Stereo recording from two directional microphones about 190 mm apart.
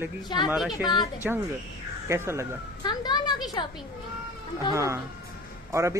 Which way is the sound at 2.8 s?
20° left (ahead or behind).